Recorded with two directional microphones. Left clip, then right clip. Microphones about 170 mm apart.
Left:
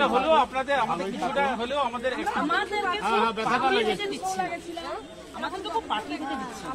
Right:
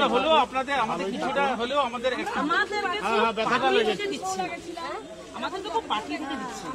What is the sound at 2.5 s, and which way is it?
Speech, 25° left (ahead or behind).